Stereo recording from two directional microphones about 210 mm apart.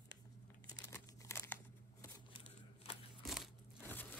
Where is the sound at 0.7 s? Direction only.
15° left (ahead or behind).